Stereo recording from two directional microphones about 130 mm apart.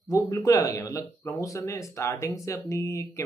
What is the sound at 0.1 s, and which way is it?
Speech, 25° left (ahead or behind).